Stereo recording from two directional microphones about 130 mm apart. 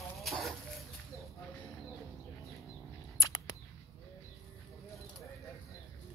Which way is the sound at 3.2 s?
30° left (ahead or behind).